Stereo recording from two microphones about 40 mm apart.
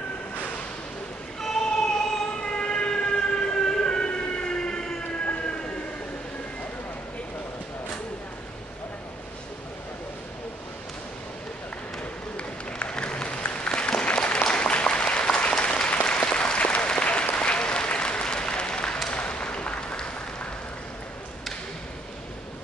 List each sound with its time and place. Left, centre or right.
1.4 s choir: centre
2.5 s train: left
12.4 s applause: left
19.0 s a sound: left